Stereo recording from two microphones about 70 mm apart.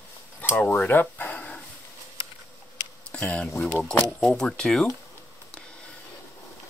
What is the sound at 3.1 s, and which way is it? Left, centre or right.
Speech, centre.